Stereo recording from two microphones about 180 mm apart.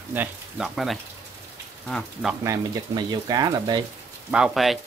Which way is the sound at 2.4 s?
20° right (ahead or behind).